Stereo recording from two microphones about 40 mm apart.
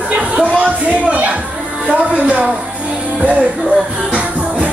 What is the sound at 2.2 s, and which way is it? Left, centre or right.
A woman's voice, right.